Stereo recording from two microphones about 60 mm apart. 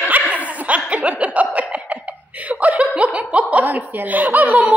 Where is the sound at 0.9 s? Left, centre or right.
Right.